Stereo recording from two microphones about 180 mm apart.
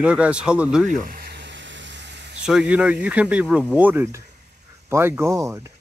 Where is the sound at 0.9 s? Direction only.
50° right (ahead or behind); by 2.4 s 70° right (ahead or behind).